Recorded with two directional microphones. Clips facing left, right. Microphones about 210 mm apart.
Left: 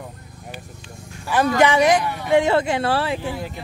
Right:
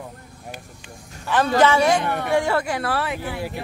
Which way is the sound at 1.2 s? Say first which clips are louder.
Even; 10° left (ahead or behind).